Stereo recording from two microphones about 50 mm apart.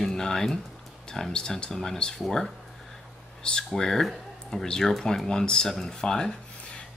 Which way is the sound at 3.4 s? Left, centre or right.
Centre.